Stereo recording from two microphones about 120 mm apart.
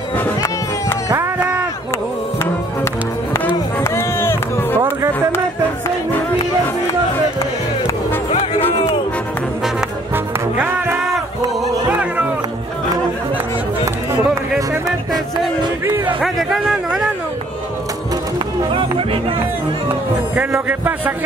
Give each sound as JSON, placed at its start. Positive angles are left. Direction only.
{"t": 1.1, "sound": "a sound", "side_deg": -20}
{"t": 3.3, "sound": "run", "side_deg": 20}
{"t": 8.3, "sound": "music", "side_deg": 55}
{"t": 10.1, "sound": "music", "side_deg": -20}
{"t": 16.2, "sound": "a sound", "side_deg": -5}
{"t": 20.6, "sound": "a man's voice", "side_deg": -15}